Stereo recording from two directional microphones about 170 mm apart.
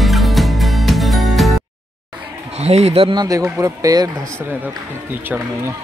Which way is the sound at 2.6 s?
40° right (ahead or behind).